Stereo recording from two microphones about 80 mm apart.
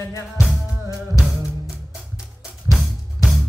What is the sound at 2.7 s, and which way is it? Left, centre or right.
Drum, centre.